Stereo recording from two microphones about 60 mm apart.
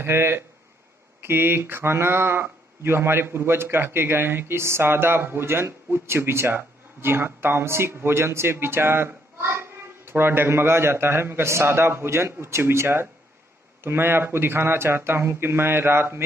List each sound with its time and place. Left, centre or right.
0.0 s speech: right